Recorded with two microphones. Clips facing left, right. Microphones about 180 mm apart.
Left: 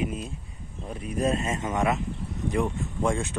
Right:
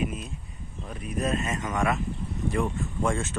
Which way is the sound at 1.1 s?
30° left (ahead or behind).